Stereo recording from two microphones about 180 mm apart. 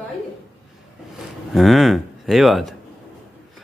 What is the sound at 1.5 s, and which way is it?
A man's voice, centre (ahead or behind).